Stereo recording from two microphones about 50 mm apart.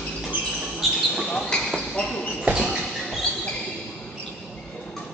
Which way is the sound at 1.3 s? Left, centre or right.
Centre.